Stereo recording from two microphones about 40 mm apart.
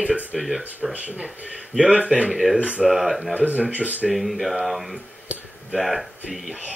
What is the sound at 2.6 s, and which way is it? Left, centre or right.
Speech, right.